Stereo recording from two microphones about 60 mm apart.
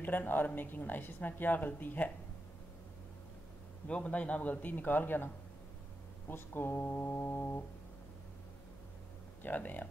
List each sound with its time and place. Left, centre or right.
0.0 s a woman's voice: left
3.8 s a woman's voice: left
9.4 s speech: left